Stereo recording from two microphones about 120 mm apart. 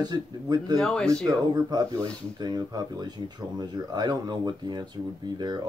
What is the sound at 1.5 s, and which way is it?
Speech, 35° right (ahead or behind).